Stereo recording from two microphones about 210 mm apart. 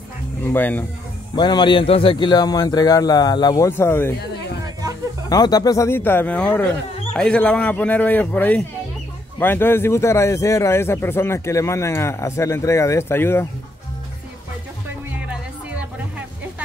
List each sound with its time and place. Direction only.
0.4 s speech: 10° left (ahead or behind)
1.3 s a man's voice: 20° left (ahead or behind)
5.3 s speech: 20° left (ahead or behind)